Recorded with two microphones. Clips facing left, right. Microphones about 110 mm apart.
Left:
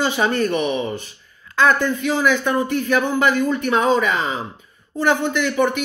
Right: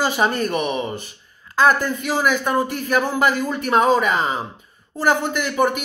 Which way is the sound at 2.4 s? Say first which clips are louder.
Left 1 dB; 35° right (ahead or behind).